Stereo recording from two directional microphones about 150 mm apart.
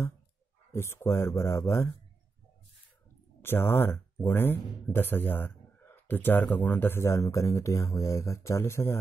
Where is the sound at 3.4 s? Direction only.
15° left (ahead or behind).